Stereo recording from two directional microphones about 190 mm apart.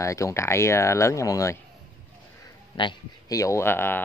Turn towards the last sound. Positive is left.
turn(degrees=10)  # may be behind; listen again after turning